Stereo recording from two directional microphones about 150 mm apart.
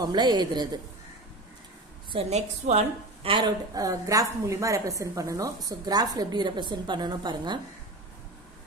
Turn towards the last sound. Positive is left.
turn(degrees=-30)  # may be behind; listen again after turning